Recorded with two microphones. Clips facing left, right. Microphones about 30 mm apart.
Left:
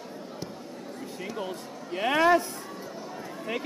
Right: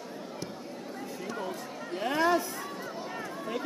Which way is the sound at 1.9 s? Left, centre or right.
Left.